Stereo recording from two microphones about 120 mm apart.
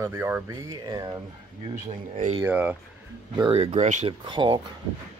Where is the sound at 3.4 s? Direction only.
55° right (ahead or behind); by 4.0 s 75° right (ahead or behind).